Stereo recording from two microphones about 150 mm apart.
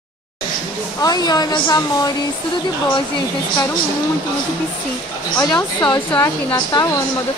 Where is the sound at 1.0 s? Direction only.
25° left (ahead or behind).